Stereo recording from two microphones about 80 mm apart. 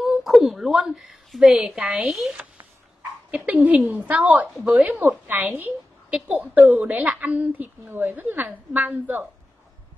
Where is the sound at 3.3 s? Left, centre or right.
Centre.